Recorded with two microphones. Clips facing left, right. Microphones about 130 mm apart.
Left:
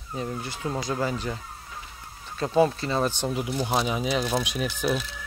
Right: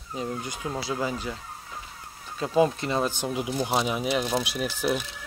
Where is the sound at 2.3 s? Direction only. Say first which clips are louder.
Left 1 dB; 10° right (ahead or behind).